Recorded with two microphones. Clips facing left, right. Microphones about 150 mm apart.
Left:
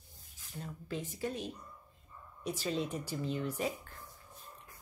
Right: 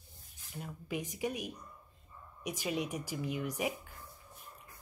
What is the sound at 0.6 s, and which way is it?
Speech, 15° right (ahead or behind).